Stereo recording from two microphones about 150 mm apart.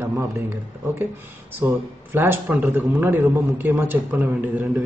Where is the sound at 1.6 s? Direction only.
15° right (ahead or behind).